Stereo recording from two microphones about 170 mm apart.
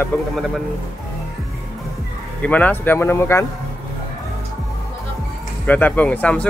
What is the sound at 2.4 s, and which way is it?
Speech, 10° left (ahead or behind).